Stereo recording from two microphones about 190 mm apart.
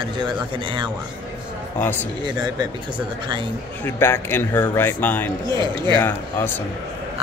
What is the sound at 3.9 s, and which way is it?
Speech, 10° left (ahead or behind).